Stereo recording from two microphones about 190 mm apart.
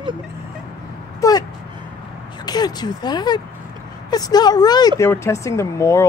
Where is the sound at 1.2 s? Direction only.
15° left (ahead or behind).